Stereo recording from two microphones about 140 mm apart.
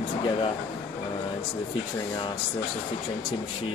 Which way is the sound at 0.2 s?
40° left (ahead or behind).